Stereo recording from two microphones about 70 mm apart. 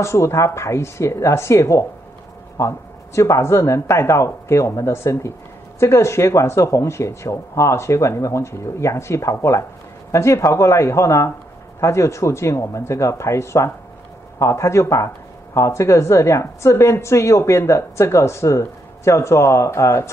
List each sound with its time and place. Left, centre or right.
0.0 s a woman's voice: left
3.2 s a woman's voice: left